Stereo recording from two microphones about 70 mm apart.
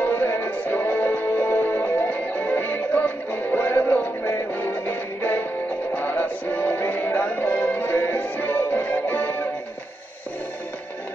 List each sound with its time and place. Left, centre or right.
0.0 s music: left